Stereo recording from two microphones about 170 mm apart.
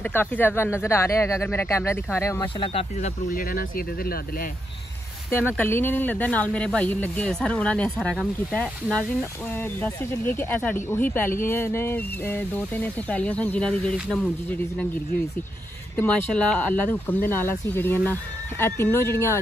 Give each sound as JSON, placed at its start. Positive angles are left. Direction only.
{"t": 0.0, "sound": "speech", "side_deg": 10}
{"t": 2.6, "sound": "speech", "side_deg": 35}
{"t": 3.3, "sound": "speech", "side_deg": 60}
{"t": 5.6, "sound": "speech", "side_deg": 10}
{"t": 16.0, "sound": "speech", "side_deg": 10}